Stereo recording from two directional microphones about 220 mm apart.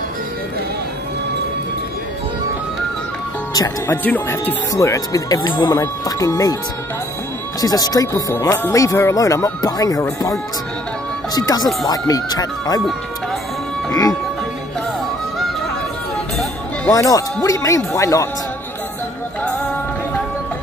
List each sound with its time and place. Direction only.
3.5 s speech: 15° left (ahead or behind)
7.6 s speech: 15° left (ahead or behind)
11.3 s speech: 15° left (ahead or behind)
13.8 s music: 15° left (ahead or behind)
16.9 s speech: 15° left (ahead or behind)
19.4 s music: 5° left (ahead or behind)